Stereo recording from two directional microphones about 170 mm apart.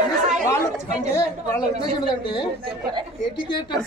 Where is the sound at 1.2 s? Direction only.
20° left (ahead or behind).